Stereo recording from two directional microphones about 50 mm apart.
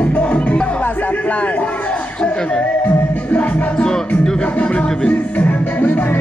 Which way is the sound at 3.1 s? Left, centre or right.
Left.